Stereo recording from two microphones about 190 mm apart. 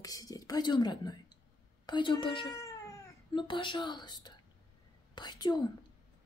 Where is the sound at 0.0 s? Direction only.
20° left (ahead or behind).